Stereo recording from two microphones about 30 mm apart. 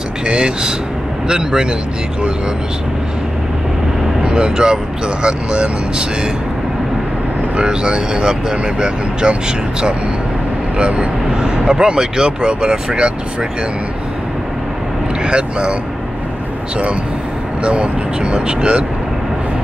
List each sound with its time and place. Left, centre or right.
0.3 s speech: right
4.2 s speech: right
7.6 s speech: right
11.4 s speech: right
15.2 s speech: right
17.6 s speech: right